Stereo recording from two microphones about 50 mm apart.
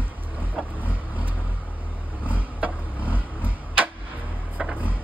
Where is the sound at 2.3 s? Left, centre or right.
Right.